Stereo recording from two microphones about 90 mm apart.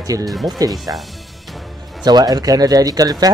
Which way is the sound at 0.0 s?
45° right (ahead or behind).